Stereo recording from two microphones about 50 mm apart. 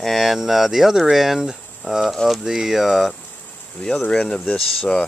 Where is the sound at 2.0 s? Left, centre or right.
Centre.